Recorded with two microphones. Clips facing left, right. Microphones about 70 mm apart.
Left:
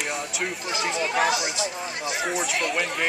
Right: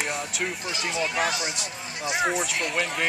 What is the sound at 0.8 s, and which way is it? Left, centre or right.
Speech, centre.